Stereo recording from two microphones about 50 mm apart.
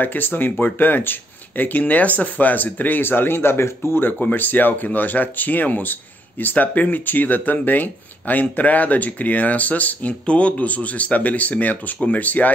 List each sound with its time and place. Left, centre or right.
0.0 s speech: left
4.2 s speech: left